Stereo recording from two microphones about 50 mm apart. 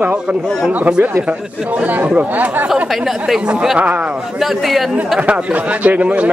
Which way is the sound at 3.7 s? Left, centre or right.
Right.